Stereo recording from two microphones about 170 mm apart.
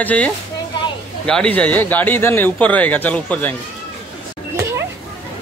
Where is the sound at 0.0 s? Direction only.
10° left (ahead or behind).